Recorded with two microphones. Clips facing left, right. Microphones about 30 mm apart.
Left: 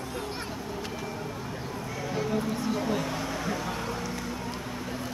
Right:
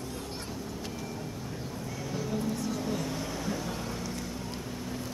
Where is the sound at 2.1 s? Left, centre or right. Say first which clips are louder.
Left 3 dB; left.